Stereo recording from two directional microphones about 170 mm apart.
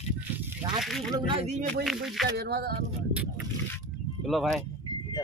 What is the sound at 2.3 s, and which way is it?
Speech, 70° right (ahead or behind).